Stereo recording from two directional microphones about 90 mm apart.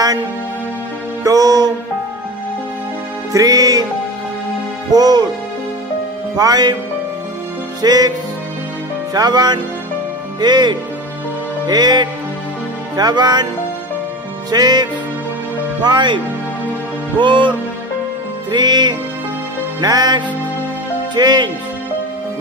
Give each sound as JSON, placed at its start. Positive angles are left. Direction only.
{"t": 1.2, "sound": "music", "side_deg": -45}
{"t": 3.3, "sound": "music", "side_deg": -40}
{"t": 4.9, "sound": "music", "side_deg": -50}
{"t": 6.3, "sound": "speech", "side_deg": -45}
{"t": 7.8, "sound": "speech", "side_deg": -45}
{"t": 9.1, "sound": "speech", "side_deg": -50}
{"t": 10.4, "sound": "music", "side_deg": -55}
{"t": 11.6, "sound": "speech", "side_deg": -50}
{"t": 14.5, "sound": "speech", "side_deg": -50}
{"t": 15.8, "sound": "music", "side_deg": -55}
{"t": 17.2, "sound": "music", "side_deg": -60}
{"t": 19.8, "sound": "speech", "side_deg": -45}